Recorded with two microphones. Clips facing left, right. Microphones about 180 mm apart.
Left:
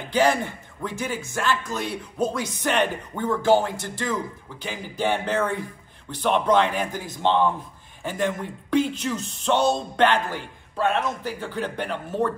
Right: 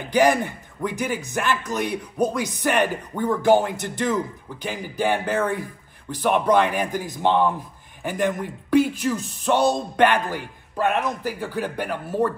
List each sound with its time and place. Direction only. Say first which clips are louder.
0.1 s speech: right 3 dB; 15° right (ahead or behind)
4.6 s speech: right 2 dB; 5° right (ahead or behind)